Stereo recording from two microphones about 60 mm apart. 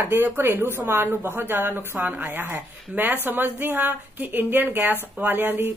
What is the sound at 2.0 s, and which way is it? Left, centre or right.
A woman's voice, right.